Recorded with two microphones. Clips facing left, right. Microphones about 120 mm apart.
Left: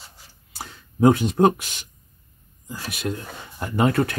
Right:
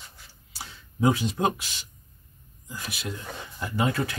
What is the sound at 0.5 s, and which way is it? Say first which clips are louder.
Speech: left 7 dB; 50° left (ahead or behind).